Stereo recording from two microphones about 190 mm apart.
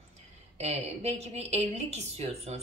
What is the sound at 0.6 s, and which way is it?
A woman's voice, 35° right (ahead or behind).